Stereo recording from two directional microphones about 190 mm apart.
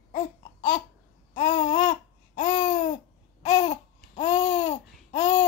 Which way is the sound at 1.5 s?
45° left (ahead or behind).